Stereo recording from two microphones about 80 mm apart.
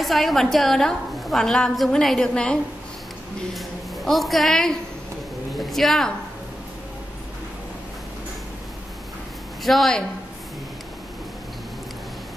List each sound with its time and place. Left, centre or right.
0.0 s a woman's voice: centre
9.6 s a woman's voice: centre